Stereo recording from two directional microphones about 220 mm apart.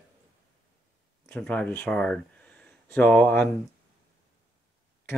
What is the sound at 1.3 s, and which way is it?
Speech, 5° left (ahead or behind).